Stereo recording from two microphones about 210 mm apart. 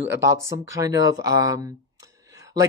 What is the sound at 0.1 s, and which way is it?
Speech, 15° right (ahead or behind).